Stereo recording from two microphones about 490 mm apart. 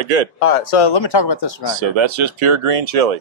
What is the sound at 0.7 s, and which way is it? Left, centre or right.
Speech, left.